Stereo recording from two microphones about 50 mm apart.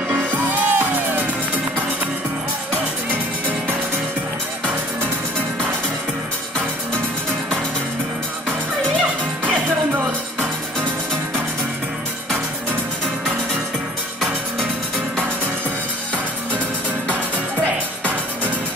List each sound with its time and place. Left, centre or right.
0.2 s music: right